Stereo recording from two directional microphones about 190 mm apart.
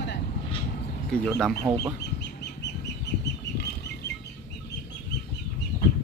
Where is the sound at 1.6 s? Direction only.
15° right (ahead or behind).